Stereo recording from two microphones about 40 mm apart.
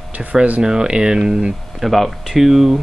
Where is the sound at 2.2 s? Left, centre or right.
Centre.